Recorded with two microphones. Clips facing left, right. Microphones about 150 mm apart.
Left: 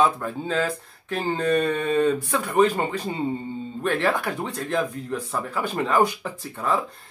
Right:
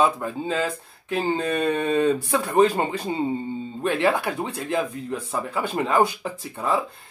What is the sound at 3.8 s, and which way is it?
Speech, 15° right (ahead or behind).